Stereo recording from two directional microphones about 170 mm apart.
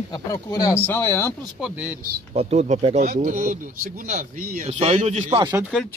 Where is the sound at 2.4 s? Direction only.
40° right (ahead or behind).